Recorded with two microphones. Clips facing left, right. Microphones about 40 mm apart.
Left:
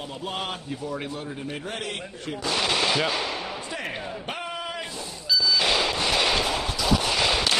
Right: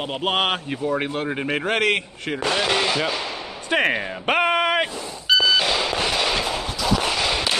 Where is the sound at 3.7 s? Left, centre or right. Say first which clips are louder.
Right 11 dB; right.